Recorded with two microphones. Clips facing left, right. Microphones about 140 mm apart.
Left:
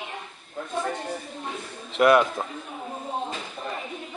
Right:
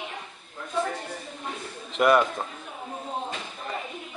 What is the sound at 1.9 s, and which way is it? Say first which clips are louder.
Speech: left 2 dB; centre (ahead or behind).